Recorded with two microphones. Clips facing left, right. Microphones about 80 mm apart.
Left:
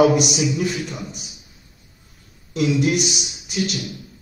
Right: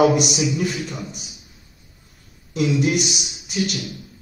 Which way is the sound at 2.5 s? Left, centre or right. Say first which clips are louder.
Left 1 dB; centre.